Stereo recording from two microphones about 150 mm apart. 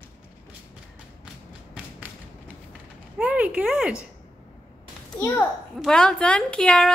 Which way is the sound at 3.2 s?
10° right (ahead or behind).